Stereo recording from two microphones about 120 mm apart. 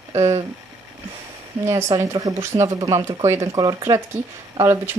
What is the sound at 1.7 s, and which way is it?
Speech, 25° right (ahead or behind).